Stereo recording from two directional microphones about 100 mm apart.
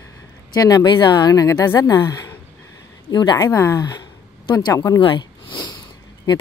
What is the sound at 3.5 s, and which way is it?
Speech, 30° left (ahead or behind).